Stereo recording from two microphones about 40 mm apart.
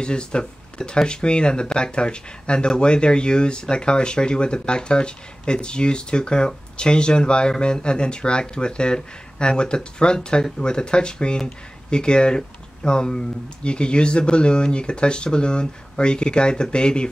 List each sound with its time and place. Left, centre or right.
0.0 s speech: left